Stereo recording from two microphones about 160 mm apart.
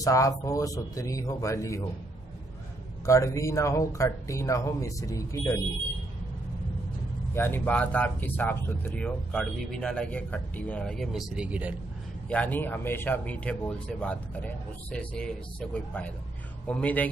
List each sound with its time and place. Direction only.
0.0 s speech: 20° left (ahead or behind)
3.1 s speech: 20° left (ahead or behind)
7.3 s speech: 15° left (ahead or behind); by 11.7 s 10° right (ahead or behind)
12.3 s speech: 10° left (ahead or behind)